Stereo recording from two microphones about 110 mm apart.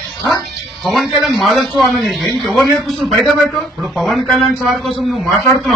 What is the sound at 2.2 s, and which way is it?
Speech, 40° right (ahead or behind).